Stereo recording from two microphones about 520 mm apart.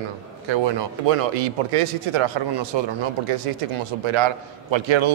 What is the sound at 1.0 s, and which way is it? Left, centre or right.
A man's voice, right.